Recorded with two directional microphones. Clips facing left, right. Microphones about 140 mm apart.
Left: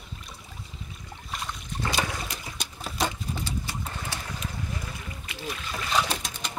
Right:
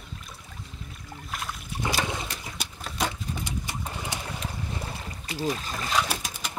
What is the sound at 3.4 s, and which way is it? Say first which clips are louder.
Pigeon: even; 15° right (ahead or behind).